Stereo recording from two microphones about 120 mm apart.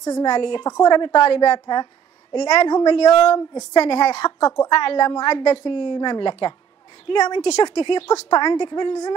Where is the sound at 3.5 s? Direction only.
30° left (ahead or behind).